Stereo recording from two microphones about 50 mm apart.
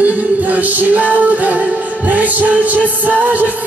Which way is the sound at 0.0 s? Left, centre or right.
Right.